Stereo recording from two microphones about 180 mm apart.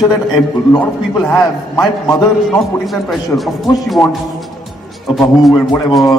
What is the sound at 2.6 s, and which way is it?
Speech, centre (ahead or behind).